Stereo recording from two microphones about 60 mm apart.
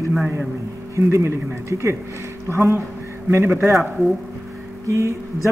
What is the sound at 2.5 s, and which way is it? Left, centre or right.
Speech, right.